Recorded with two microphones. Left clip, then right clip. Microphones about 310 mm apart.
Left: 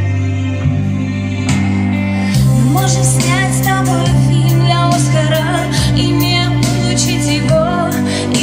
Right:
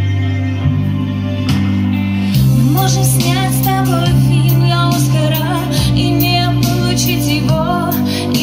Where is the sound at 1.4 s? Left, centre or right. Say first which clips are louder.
Left 2 dB; centre.